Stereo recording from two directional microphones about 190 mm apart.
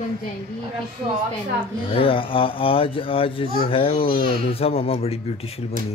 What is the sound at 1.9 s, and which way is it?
Speech, 30° left (ahead or behind).